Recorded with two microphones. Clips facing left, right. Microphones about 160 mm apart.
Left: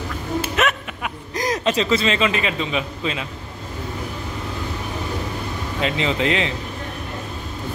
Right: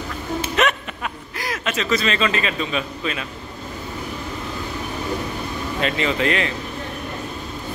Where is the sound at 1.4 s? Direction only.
35° left (ahead or behind); by 3.3 s 20° left (ahead or behind).